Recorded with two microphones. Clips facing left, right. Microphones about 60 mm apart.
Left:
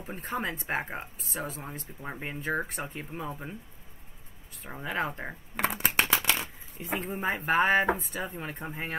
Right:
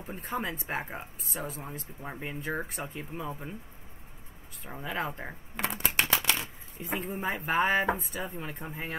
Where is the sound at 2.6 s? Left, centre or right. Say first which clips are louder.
Left 1 dB; centre.